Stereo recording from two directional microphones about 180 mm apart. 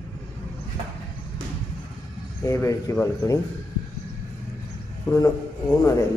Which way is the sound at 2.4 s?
15° left (ahead or behind).